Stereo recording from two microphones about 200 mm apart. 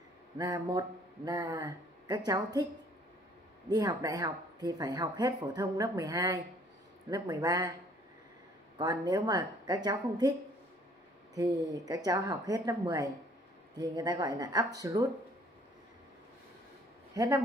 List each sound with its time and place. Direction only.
0.4 s speech: 20° right (ahead or behind)
3.6 s speech: 20° right (ahead or behind)
8.7 s speech: 20° right (ahead or behind)
11.3 s speech: 15° right (ahead or behind)
17.1 s speech: 15° right (ahead or behind)